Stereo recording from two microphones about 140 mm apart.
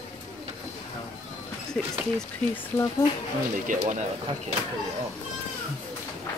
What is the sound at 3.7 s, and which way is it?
Speech, 60° right (ahead or behind).